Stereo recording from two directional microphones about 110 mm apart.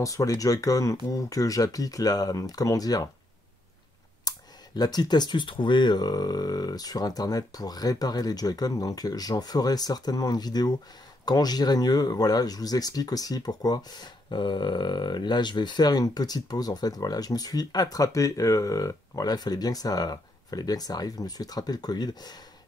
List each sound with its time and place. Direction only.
0.0 s speech: 30° left (ahead or behind)
4.2 s speech: 35° left (ahead or behind)